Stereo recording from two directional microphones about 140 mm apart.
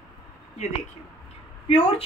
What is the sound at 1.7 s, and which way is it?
Speech, 40° left (ahead or behind).